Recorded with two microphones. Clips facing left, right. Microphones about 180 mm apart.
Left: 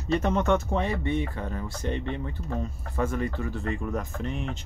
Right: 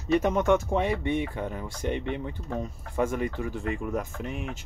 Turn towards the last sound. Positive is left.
turn(degrees=-10)  # may be behind; listen again after turning